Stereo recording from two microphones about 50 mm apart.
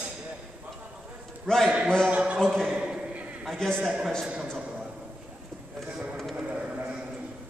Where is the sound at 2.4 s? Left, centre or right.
Centre.